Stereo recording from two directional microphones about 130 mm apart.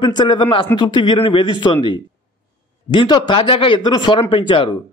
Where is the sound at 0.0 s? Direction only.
35° left (ahead or behind).